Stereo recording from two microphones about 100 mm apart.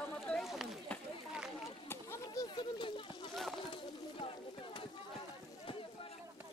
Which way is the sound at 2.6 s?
60° left (ahead or behind).